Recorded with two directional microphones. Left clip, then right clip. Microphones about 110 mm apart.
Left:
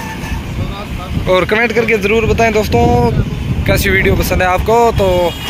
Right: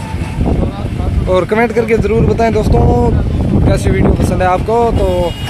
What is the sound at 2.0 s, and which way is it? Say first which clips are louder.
Speech: left 1 dB; 30° right (ahead or behind).